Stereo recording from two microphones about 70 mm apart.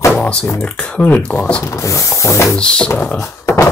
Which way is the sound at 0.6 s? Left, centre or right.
Centre.